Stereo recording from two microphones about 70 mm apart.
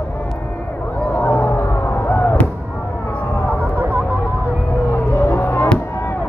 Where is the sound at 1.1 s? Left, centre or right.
Left.